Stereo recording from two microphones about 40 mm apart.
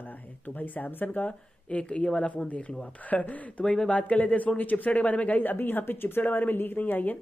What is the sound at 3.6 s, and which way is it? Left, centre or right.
Speech, centre.